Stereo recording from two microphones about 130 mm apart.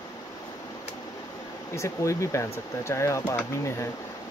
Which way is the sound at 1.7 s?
20° left (ahead or behind).